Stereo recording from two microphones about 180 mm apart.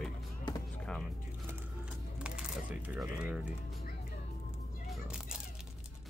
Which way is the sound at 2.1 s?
5° right (ahead or behind).